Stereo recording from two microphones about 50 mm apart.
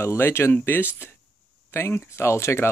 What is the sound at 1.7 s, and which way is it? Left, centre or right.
Speech, left.